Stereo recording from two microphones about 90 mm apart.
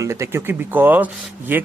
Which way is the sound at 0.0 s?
30° right (ahead or behind).